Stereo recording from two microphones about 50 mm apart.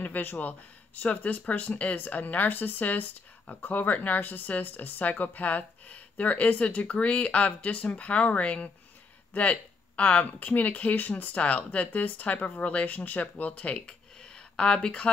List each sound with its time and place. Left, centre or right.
0.0 s speech: left